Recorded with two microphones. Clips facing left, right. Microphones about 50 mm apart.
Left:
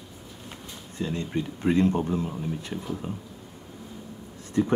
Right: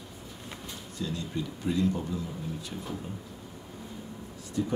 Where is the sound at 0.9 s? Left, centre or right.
Left.